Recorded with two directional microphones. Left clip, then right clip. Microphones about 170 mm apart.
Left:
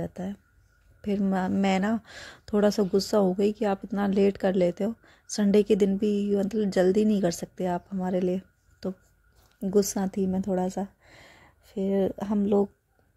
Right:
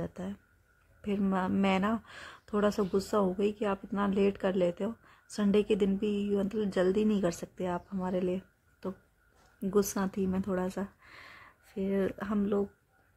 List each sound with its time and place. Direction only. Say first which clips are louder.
0.0 s speech: left 4 dB; 15° left (ahead or behind)